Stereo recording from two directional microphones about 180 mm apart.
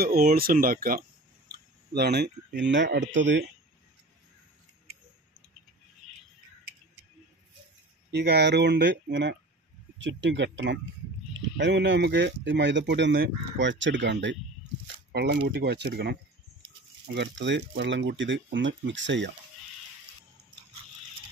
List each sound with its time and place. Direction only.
0.0 s speech: 55° right (ahead or behind); by 3.4 s 85° right
8.1 s speech: 70° right (ahead or behind)
9.9 s speech: 90° right
15.4 s speech: 70° right (ahead or behind)
17.1 s speech: 75° right (ahead or behind)